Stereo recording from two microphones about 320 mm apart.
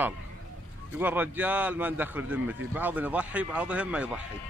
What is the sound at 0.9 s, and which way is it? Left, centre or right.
A man's voice, centre.